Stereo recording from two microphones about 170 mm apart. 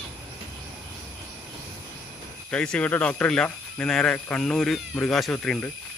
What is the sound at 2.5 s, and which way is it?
Speech, 5° left (ahead or behind).